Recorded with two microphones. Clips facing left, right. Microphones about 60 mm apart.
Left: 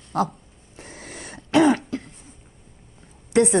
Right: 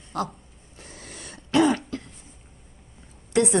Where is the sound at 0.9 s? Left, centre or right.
Left.